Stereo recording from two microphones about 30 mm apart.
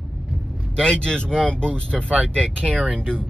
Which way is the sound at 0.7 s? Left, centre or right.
Left.